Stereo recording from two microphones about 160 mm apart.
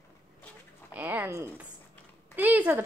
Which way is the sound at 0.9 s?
10° right (ahead or behind).